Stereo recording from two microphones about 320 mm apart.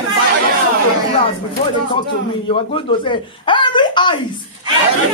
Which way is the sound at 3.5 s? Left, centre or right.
Centre.